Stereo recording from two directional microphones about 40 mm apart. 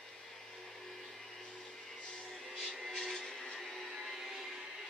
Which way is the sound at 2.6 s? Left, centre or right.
Centre.